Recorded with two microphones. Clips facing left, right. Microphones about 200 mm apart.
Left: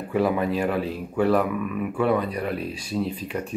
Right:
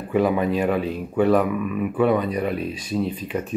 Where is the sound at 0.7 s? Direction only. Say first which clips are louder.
Right 3 dB; 20° right (ahead or behind).